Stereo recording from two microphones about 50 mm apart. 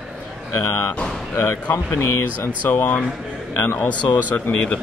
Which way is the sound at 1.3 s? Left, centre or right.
Left.